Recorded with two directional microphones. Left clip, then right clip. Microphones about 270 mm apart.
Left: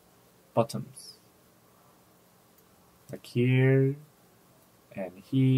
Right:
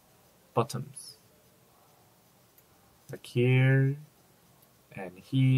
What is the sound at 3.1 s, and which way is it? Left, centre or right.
Speech, centre.